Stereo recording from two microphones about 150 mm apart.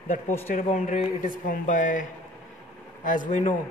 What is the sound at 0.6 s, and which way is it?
Speech, 60° left (ahead or behind).